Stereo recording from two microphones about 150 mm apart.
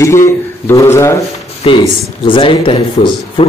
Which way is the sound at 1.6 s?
35° left (ahead or behind).